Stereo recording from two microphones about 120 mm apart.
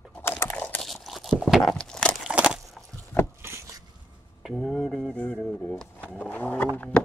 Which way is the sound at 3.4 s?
20° right (ahead or behind).